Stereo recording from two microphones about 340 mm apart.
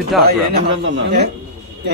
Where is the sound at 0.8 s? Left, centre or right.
Right.